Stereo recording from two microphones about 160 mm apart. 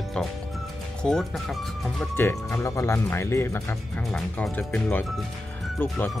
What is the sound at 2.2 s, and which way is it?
Speech, 15° left (ahead or behind).